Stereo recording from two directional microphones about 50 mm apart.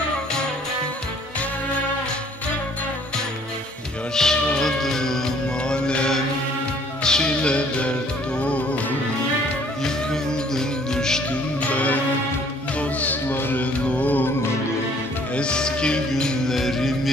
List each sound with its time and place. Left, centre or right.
4.1 s speech: centre
4.6 s music: centre; by 8.6 s left
10.5 s music: centre
11.7 s music: left
13.0 s music: left
13.7 s mantra: left
15.3 s music: centre
16.5 s music: centre